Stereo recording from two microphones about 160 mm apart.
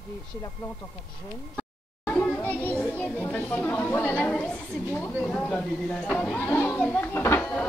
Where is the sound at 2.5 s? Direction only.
10° left (ahead or behind).